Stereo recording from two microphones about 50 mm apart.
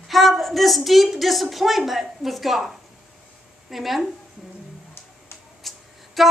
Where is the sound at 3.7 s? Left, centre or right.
Centre.